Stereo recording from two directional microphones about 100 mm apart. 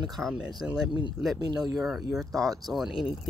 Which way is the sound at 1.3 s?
40° right (ahead or behind).